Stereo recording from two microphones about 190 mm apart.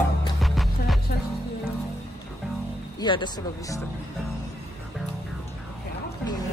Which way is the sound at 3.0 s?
25° left (ahead or behind).